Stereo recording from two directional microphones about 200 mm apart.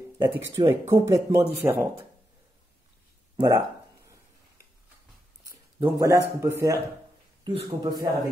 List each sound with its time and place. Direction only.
0.5 s speech: 15° right (ahead or behind)
3.3 s speech: 20° right (ahead or behind)
5.4 s speech: 15° right (ahead or behind)